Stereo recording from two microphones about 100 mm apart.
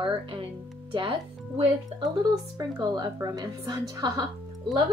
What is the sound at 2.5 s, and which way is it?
A woman's voice, 40° right (ahead or behind).